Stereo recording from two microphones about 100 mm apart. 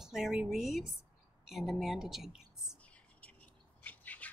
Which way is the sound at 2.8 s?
15° left (ahead or behind).